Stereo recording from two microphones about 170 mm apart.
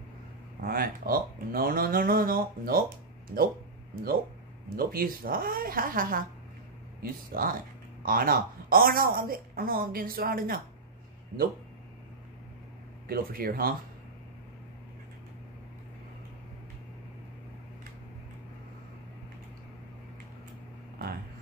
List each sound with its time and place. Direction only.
0.6 s speech: 60° right (ahead or behind)
13.1 s speech: 60° right (ahead or behind)